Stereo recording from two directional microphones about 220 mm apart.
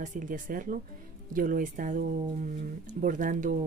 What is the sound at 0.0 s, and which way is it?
Speech, 35° right (ahead or behind).